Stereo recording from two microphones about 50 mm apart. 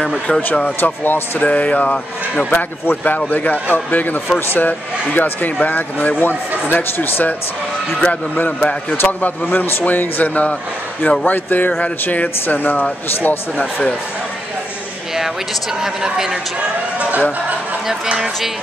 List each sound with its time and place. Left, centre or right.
0.3 s speech: centre
0.7 s speech: left
1.4 s music: left
2.5 s speech: left
8.5 s music: left
9.0 s speech: left
15.8 s speech: centre
16.5 s a sound: right
18.0 s speech: centre